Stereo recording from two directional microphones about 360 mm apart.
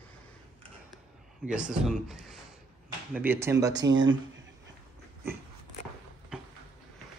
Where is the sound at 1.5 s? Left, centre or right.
Centre.